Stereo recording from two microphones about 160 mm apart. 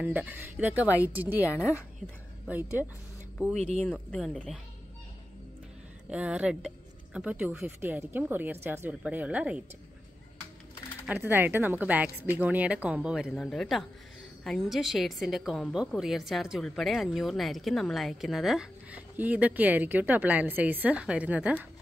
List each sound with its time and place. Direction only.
0.0 s speech: 10° right (ahead or behind)
3.5 s speech: 40° right (ahead or behind)
4.1 s a woman's voice: 5° left (ahead or behind)
6.0 s speech: 5° right (ahead or behind)
11.1 s a woman's voice: 10° right (ahead or behind)